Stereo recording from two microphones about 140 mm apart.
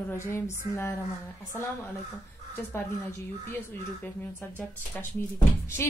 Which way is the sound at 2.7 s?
15° left (ahead or behind).